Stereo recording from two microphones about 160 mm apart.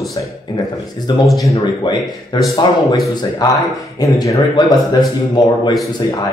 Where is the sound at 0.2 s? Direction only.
25° left (ahead or behind).